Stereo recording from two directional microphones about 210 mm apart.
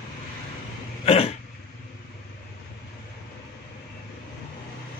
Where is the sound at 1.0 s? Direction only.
30° left (ahead or behind).